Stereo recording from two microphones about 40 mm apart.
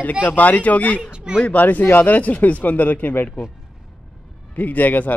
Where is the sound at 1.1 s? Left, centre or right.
Right.